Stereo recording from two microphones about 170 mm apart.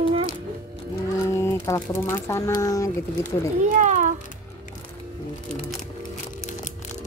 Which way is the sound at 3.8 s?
45° right (ahead or behind).